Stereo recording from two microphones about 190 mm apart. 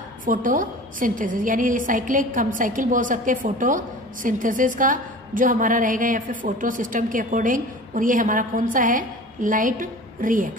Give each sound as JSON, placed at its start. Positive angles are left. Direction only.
{"t": 0.2, "sound": "a woman's voice", "side_deg": -45}